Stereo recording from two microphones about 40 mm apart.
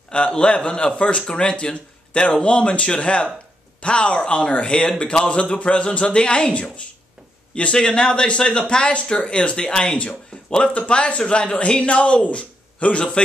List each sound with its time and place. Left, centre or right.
0.3 s speech: left
7.8 s speech: centre; by 13.0 s left